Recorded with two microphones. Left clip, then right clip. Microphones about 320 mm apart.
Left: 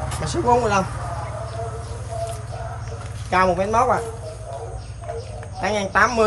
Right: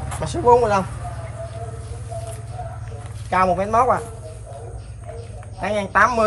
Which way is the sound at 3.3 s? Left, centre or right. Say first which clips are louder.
Even; centre.